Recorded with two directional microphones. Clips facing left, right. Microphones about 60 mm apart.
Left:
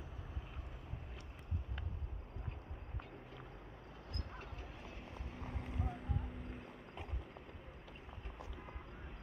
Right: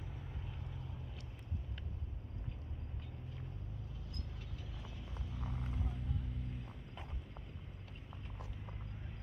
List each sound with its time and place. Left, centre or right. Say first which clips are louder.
5.2 s vehicle: right 3 dB; left